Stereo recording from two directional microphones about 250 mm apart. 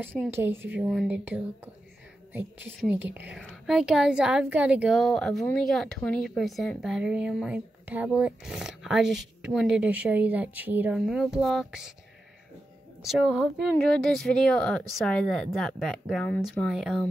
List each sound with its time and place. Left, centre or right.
0.3 s speech: centre
13.0 s speech: centre